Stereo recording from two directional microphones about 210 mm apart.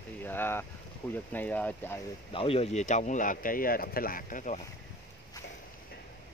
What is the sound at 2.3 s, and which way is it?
Speech, 25° left (ahead or behind).